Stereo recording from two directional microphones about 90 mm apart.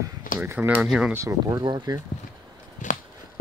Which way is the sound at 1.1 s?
35° right (ahead or behind).